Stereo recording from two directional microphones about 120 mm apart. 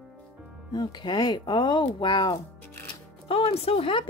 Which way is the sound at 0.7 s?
35° left (ahead or behind).